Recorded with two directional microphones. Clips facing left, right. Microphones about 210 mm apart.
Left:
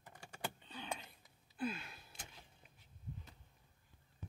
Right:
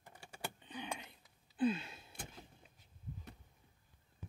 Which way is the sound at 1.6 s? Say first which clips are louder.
Right 7 dB; 25° right (ahead or behind).